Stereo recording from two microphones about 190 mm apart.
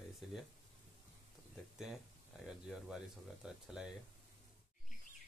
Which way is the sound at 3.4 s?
5° right (ahead or behind).